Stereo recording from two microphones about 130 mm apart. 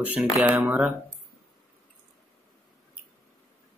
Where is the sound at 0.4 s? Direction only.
10° right (ahead or behind).